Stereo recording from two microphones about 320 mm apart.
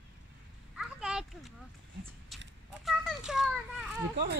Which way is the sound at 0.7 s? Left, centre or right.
Centre.